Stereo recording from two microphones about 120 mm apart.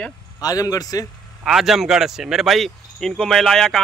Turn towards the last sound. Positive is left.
turn(degrees=5)  # may be behind; listen again after turning